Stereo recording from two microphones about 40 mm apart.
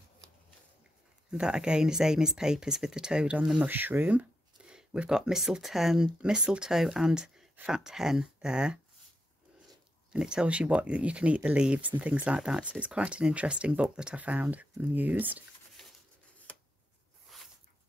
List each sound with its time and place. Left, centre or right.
1.4 s speech: right
3.6 s speech: right
4.6 s a sound: right
5.1 s speech: centre
6.2 s speech: right
6.7 s speech: centre
10.1 s speech: right
12.4 s speech: centre
12.6 s speech: right
14.1 s speech: right
17.3 s a sound: centre